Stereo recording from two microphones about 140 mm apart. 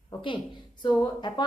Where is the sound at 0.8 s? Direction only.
35° left (ahead or behind).